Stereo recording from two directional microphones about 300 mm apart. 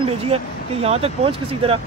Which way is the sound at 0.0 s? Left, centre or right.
Centre.